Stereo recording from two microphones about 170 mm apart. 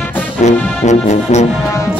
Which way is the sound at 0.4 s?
45° left (ahead or behind).